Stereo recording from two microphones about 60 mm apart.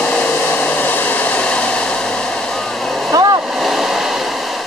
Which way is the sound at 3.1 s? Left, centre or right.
Right.